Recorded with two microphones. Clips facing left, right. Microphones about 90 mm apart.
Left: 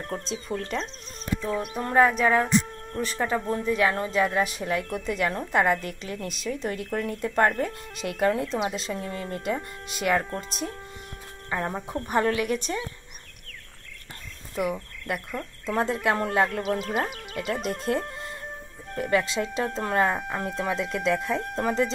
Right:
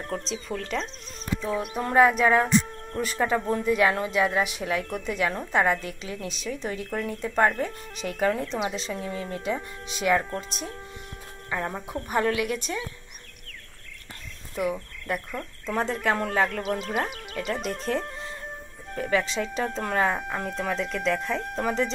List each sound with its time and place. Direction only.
0.1 s speech: 30° left (ahead or behind)
0.5 s speech: centre (ahead or behind)
14.5 s speech: centre (ahead or behind)